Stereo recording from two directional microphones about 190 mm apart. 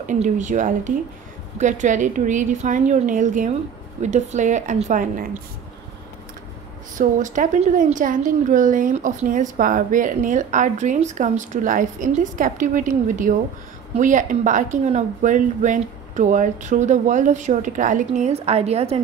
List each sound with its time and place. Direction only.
0.0 s a woman's voice: 40° right (ahead or behind)
7.0 s a woman's voice: 40° right (ahead or behind)